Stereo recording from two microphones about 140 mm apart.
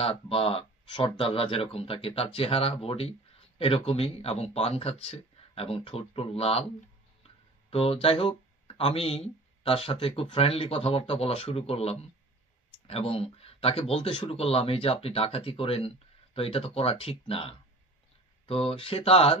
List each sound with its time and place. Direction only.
0.0 s speech: 45° left (ahead or behind)